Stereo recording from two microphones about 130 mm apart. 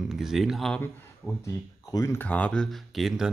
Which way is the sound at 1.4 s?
25° left (ahead or behind).